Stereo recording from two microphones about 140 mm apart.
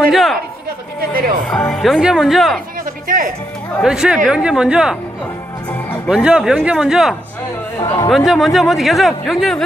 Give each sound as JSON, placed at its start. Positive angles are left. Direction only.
{"t": 0.1, "sound": "chatter", "side_deg": 0}
{"t": 1.1, "sound": "speech", "side_deg": -90}
{"t": 1.4, "sound": "speech", "side_deg": 5}
{"t": 2.8, "sound": "music", "side_deg": -80}
{"t": 3.8, "sound": "speech", "side_deg": -5}
{"t": 6.0, "sound": "speech", "side_deg": -5}
{"t": 7.8, "sound": "speech", "side_deg": 25}
{"t": 8.3, "sound": "speech", "side_deg": 0}